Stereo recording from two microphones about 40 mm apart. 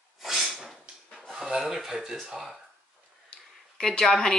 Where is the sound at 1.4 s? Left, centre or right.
Centre.